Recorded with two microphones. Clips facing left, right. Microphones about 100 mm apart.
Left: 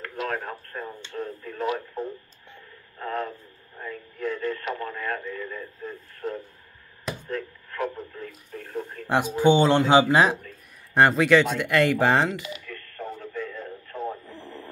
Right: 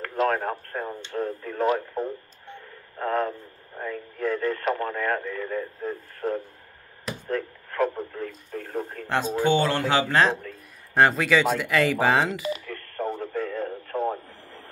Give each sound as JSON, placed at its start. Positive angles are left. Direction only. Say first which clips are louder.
{"t": 0.0, "sound": "speech", "louder": "right 6 dB", "side_deg": -40}
{"t": 3.0, "sound": "radio", "louder": "right 5 dB", "side_deg": -40}
{"t": 7.2, "sound": "speech", "louder": "right 3 dB", "side_deg": -45}
{"t": 9.0, "sound": "speech", "louder": "left 4 dB", "side_deg": 15}
{"t": 11.0, "sound": "speech", "louder": "left 2 dB", "side_deg": 0}
{"t": 12.4, "sound": "radio", "louder": "right 6 dB", "side_deg": -40}